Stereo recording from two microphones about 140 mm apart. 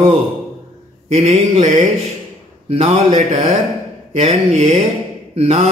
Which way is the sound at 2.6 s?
50° right (ahead or behind).